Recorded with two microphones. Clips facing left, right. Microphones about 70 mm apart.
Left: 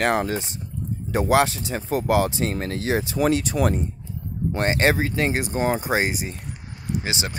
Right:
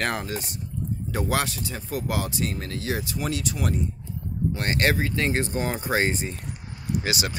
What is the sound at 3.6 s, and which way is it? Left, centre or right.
Speech, left.